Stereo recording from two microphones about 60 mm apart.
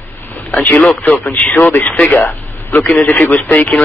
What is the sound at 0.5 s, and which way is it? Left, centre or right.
A man's voice, left.